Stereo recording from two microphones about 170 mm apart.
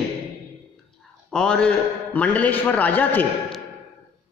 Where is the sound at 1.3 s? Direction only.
5° left (ahead or behind).